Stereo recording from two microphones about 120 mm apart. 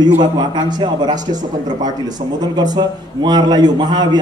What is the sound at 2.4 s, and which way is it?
Speech, 35° right (ahead or behind).